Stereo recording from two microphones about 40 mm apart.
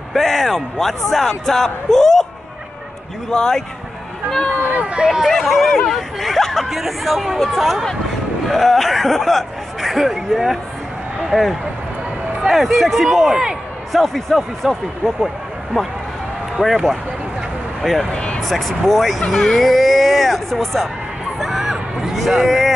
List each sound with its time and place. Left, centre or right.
0.1 s speech: centre
3.3 s speech: centre
4.7 s run: right
5.0 s speech: centre
5.3 s speech: centre
16.6 s speech: centre
18.1 s speech: left
18.4 s speech: centre
19.6 s a sound: centre
22.5 s speech: centre